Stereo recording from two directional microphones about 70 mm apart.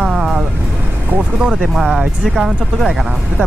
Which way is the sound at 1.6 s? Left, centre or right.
Centre.